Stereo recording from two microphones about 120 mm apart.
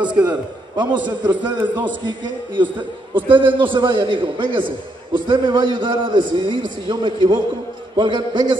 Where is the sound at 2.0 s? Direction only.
40° right (ahead or behind).